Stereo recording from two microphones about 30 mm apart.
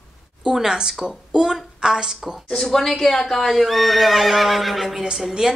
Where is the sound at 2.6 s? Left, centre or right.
Centre.